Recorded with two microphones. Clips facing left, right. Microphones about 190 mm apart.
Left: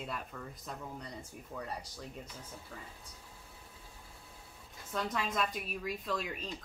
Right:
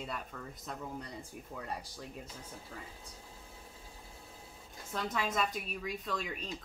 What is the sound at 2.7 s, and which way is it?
Speech, 5° left (ahead or behind).